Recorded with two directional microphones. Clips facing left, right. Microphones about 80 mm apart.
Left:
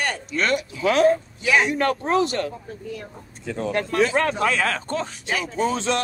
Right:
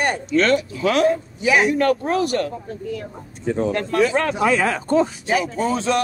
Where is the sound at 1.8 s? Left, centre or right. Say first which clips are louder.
Right 2 dB; left.